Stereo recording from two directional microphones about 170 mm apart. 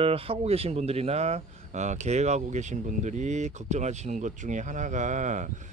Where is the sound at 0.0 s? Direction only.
35° right (ahead or behind).